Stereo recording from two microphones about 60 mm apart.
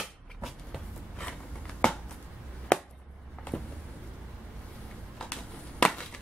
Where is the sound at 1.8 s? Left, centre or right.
Centre.